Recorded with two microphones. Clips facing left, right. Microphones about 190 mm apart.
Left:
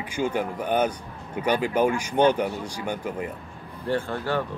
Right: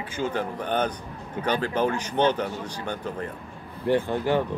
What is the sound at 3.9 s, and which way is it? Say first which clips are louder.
Speech: right 3 dB; 15° right (ahead or behind).